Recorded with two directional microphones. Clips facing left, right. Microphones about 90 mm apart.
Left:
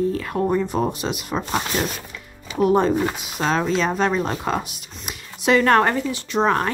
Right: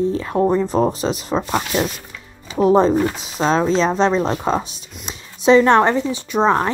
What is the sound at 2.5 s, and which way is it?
Speech, 30° right (ahead or behind).